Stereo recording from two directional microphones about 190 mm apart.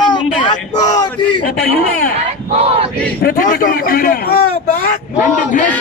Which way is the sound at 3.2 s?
50° left (ahead or behind).